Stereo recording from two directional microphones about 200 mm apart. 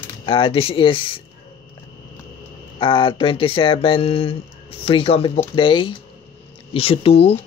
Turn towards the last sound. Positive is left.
turn(degrees=30)  # may be behind; listen again after turning